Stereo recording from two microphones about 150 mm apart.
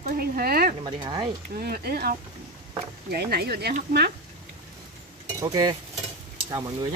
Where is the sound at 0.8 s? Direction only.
30° right (ahead or behind).